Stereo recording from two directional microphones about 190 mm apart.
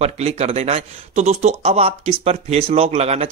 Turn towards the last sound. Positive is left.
turn(degrees=-35)  # may be behind; listen again after turning